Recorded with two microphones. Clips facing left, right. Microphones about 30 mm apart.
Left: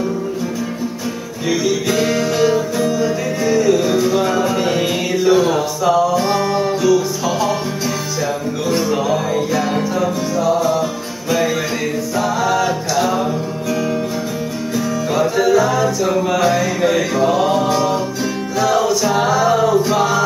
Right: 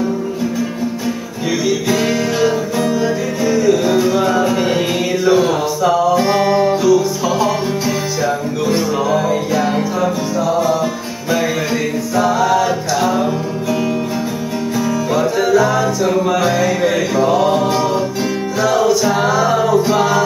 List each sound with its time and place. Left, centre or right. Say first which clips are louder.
1.9 s music: right 1 dB; centre
2.8 s music: right 1 dB; centre
3.4 s music: right 1 dB; centre
8.6 s music: right 1 dB; centre
12.2 s music: right 4 dB; centre
15.1 s music: even; centre